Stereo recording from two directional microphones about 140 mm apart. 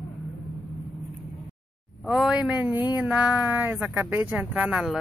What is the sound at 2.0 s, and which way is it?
Speech, 5° right (ahead or behind).